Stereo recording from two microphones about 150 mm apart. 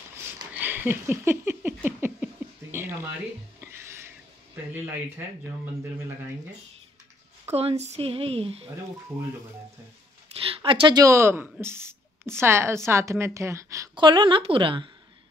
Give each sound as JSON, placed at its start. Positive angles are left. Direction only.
{"t": 0.6, "sound": "a sound", "side_deg": -15}
{"t": 4.7, "sound": "speech", "side_deg": -15}
{"t": 7.5, "sound": "speech", "side_deg": -45}
{"t": 10.6, "sound": "a woman's voice", "side_deg": -35}
{"t": 13.9, "sound": "speech", "side_deg": -30}